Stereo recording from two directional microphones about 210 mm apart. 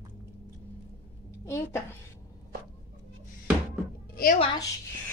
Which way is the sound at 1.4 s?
10° left (ahead or behind).